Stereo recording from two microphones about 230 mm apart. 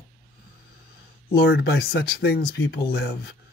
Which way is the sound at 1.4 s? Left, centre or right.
Left.